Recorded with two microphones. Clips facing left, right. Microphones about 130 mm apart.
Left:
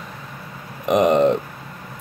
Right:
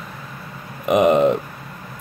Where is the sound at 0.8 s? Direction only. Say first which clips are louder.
Right 1 dB; 5° right (ahead or behind).